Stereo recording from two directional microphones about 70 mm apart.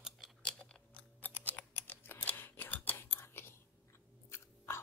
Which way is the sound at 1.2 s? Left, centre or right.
Left.